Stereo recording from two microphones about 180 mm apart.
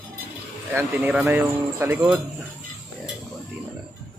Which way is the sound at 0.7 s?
5° right (ahead or behind).